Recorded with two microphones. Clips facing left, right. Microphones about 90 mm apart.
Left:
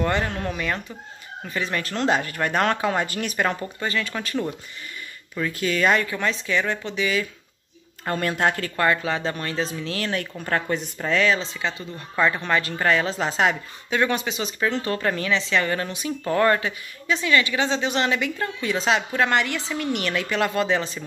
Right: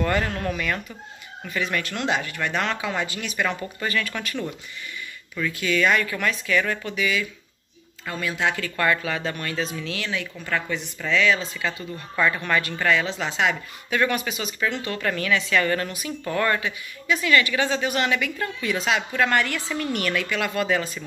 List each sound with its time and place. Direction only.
0.0 s a woman's voice: 20° left (ahead or behind)
1.5 s speech: 30° left (ahead or behind)
3.8 s a woman's voice: 25° left (ahead or behind)
8.0 s a woman's voice: 50° left (ahead or behind); by 15.0 s 35° left (ahead or behind)
15.0 s a woman's voice: 25° left (ahead or behind)